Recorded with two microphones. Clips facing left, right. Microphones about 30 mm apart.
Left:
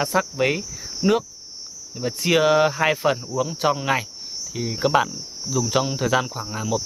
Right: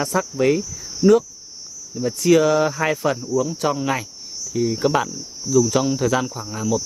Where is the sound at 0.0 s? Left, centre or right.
Left.